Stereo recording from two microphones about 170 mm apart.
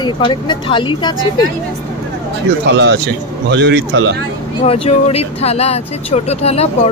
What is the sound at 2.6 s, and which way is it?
A man's voice, 90° right.